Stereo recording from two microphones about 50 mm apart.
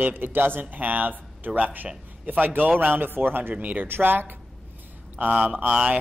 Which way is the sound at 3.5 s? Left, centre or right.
Right.